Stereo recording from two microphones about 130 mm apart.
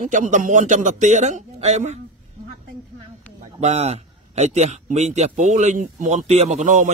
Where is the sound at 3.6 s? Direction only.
55° right (ahead or behind).